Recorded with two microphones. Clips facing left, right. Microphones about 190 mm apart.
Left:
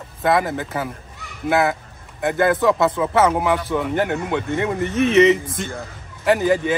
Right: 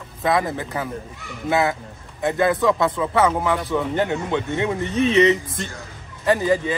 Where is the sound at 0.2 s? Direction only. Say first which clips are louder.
Left 2 dB; centre (ahead or behind).